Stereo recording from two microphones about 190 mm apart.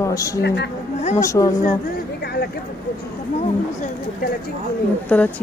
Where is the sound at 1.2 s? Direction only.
15° left (ahead or behind).